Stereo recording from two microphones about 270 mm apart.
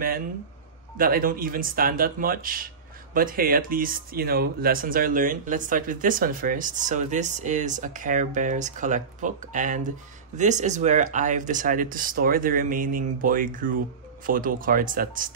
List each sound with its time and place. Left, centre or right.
0.9 s speech: right